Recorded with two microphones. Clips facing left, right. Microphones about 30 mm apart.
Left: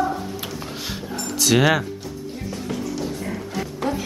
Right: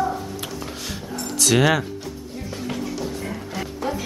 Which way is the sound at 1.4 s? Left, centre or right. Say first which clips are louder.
Left 1 dB; centre.